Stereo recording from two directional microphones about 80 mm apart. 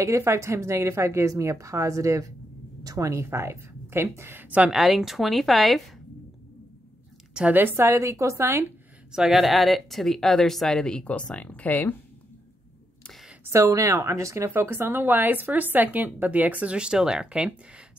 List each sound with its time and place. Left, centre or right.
0.0 s a woman's voice: right
4.6 s a woman's voice: centre
7.3 s a woman's voice: centre
9.1 s a woman's voice: centre; by 11.9 s left
13.4 s speech: right; by 17.5 s centre